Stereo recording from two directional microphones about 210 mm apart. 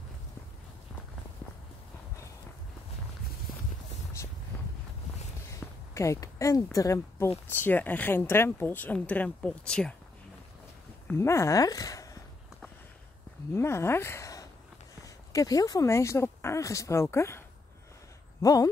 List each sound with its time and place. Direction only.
4.2 s vehicle: 15° left (ahead or behind)
5.6 s a sound: 5° left (ahead or behind)
5.9 s speech: 15° left (ahead or behind)
11.1 s speech: 15° left (ahead or behind)
13.5 s speech: 10° left (ahead or behind)
18.4 s speech: 15° left (ahead or behind)